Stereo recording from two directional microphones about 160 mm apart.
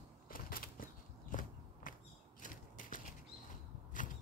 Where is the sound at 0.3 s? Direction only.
65° left (ahead or behind).